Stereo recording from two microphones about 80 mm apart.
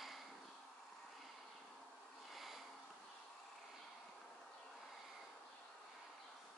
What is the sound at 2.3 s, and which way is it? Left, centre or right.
Sniff, centre.